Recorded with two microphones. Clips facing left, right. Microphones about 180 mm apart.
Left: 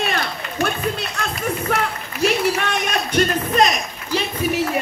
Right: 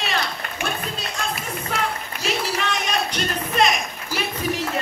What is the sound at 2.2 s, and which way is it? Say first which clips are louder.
Speech: left 7 dB; 60° left (ahead or behind).